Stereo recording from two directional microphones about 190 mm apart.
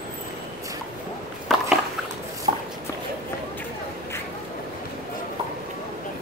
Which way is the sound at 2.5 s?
35° right (ahead or behind).